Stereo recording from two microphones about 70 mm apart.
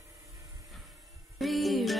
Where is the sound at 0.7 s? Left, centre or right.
Centre.